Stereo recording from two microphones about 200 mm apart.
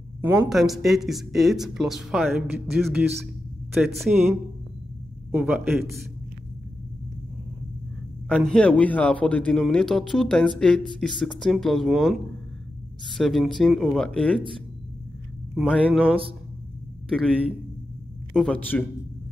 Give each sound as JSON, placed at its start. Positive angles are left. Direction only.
{"t": 0.2, "sound": "speech", "side_deg": -15}
{"t": 0.5, "sound": "a man's voice", "side_deg": 0}
{"t": 8.4, "sound": "speech", "side_deg": 5}
{"t": 15.5, "sound": "speech", "side_deg": -5}
{"t": 18.3, "sound": "speech", "side_deg": 5}